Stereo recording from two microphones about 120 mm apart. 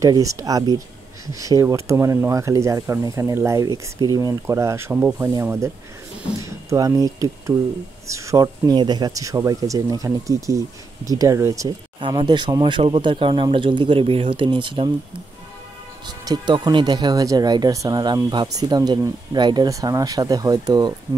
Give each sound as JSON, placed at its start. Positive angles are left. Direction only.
{"t": 0.0, "sound": "speech", "side_deg": -25}
{"t": 12.0, "sound": "speech", "side_deg": -40}
{"t": 16.1, "sound": "speech", "side_deg": -35}